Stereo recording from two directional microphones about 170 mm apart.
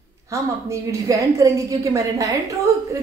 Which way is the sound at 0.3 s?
20° right (ahead or behind).